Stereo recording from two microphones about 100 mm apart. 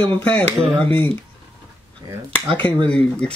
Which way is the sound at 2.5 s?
55° right (ahead or behind).